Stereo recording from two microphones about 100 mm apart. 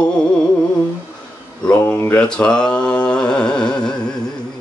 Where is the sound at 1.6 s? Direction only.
10° left (ahead or behind).